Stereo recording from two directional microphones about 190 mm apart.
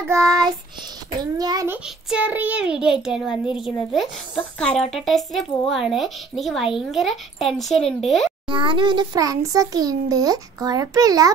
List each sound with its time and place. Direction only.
0.1 s child singing: 20° right (ahead or behind)
1.4 s a child's voice: 20° right (ahead or behind)
2.0 s speech: 5° right (ahead or behind)
8.5 s a child's voice: 25° right (ahead or behind)